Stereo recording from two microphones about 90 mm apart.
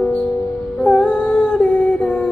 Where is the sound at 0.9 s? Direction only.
15° left (ahead or behind).